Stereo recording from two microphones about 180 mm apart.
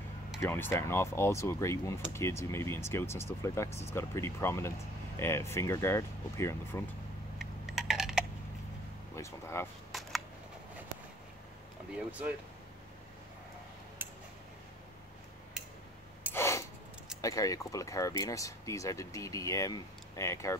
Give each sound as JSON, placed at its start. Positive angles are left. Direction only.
{"t": 0.4, "sound": "speech", "side_deg": 10}
{"t": 7.3, "sound": "typing", "side_deg": 0}
{"t": 9.1, "sound": "speech", "side_deg": 15}
{"t": 11.9, "sound": "speech", "side_deg": -5}
{"t": 16.3, "sound": "a sound", "side_deg": 15}
{"t": 17.2, "sound": "speech", "side_deg": 20}